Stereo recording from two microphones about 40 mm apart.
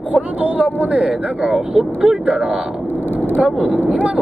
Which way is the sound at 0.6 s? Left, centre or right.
Right.